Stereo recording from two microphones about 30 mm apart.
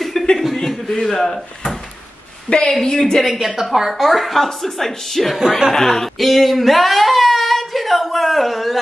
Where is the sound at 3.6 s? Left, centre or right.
Centre.